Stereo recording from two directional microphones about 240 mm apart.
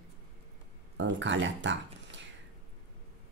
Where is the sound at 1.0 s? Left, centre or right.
Right.